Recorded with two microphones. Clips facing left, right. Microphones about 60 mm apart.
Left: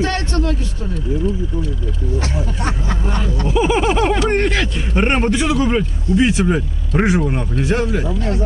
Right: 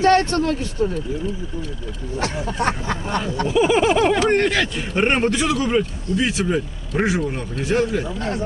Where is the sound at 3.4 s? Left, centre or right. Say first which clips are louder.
Even; centre.